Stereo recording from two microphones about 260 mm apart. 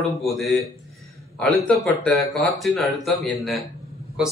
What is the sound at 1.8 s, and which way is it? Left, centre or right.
A man's voice, centre.